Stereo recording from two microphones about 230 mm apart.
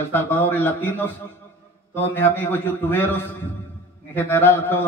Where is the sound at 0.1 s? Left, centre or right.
Centre.